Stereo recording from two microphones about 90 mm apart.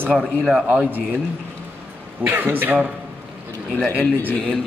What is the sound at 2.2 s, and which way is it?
Speech, 20° right (ahead or behind).